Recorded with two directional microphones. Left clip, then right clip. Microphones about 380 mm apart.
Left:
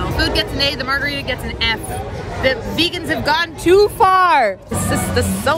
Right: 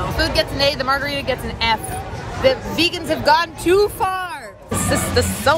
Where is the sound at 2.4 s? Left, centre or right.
Centre.